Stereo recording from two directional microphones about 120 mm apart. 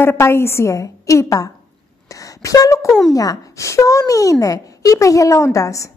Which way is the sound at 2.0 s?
30° left (ahead or behind).